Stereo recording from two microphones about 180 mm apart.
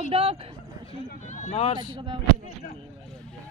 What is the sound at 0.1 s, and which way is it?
Speech, 30° right (ahead or behind).